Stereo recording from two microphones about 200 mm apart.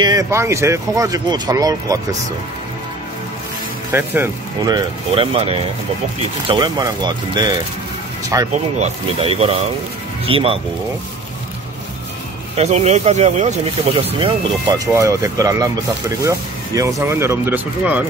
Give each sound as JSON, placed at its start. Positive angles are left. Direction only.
{"t": 0.0, "sound": "speech", "side_deg": -15}
{"t": 3.9, "sound": "speech", "side_deg": -10}
{"t": 4.7, "sound": "speech", "side_deg": -25}
{"t": 8.7, "sound": "speech", "side_deg": -30}
{"t": 12.5, "sound": "speech", "side_deg": -35}
{"t": 15.0, "sound": "speech", "side_deg": -15}